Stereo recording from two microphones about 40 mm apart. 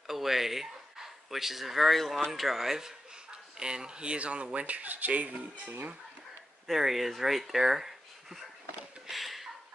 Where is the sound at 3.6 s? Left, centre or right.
Right.